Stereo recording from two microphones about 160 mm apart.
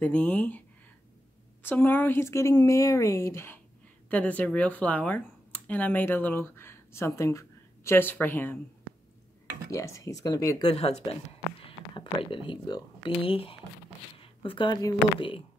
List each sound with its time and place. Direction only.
0.0 s speech: 5° left (ahead or behind)
1.6 s a woman's voice: 15° left (ahead or behind)
9.7 s speech: 20° left (ahead or behind)
10.7 s speech: 40° left (ahead or behind)